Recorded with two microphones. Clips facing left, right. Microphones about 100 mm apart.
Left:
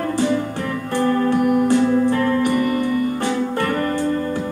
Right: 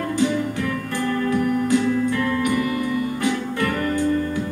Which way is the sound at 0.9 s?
35° left (ahead or behind).